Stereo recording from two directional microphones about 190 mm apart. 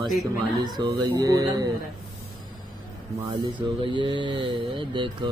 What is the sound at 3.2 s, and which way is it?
Mantra, 25° right (ahead or behind).